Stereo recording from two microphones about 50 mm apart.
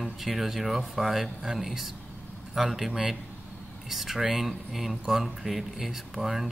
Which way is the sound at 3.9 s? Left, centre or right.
Centre.